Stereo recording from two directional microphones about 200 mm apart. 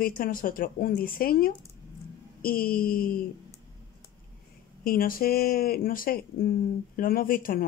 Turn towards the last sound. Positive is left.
turn(degrees=45)  # may be behind; listen again after turning